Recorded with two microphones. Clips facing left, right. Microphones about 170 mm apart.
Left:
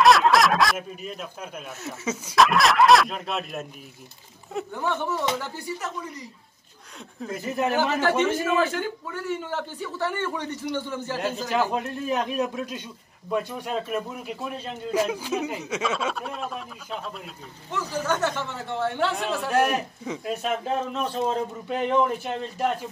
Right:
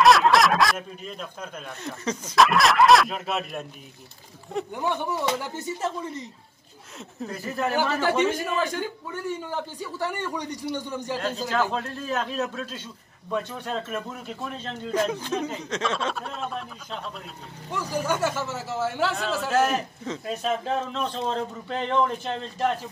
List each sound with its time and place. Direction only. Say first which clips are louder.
0.0 s speech: even; centre (ahead or behind)
4.7 s speech: left 1 dB; 15° right (ahead or behind)
5.5 s speech: right 3 dB; 25° right (ahead or behind)
7.2 s a man's voice: left 2 dB; 20° left (ahead or behind)
8.2 s speech: left 2 dB; 15° right (ahead or behind)
11.4 s a man's voice: left 1 dB; 15° left (ahead or behind)
17.6 s speech: even; 15° right (ahead or behind)
19.6 s a man's voice: even; 10° left (ahead or behind)